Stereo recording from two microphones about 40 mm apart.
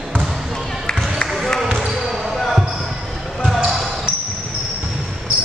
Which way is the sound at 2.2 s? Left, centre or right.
Centre.